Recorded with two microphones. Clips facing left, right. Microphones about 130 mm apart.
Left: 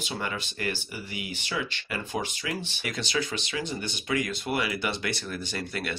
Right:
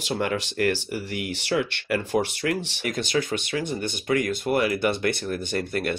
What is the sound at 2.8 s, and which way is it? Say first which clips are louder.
Speech: right 5 dB; 50° right (ahead or behind).